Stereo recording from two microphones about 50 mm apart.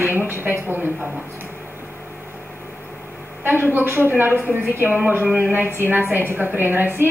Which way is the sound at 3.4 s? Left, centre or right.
Right.